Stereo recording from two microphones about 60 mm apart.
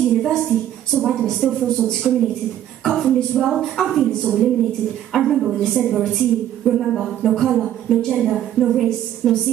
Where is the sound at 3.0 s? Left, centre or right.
Centre.